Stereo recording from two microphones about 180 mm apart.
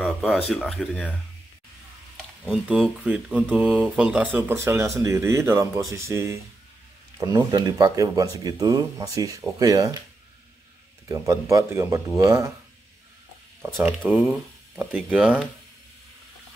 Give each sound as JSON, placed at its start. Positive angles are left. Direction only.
{"t": 0.0, "sound": "a sound", "side_deg": 0}
{"t": 0.5, "sound": "speech", "side_deg": 0}
{"t": 2.4, "sound": "speech", "side_deg": -5}
{"t": 11.1, "sound": "speech", "side_deg": -20}
{"t": 13.6, "sound": "speech", "side_deg": -10}